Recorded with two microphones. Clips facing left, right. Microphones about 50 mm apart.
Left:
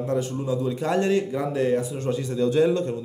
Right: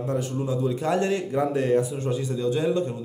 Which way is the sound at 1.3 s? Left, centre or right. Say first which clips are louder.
Right 1 dB; centre.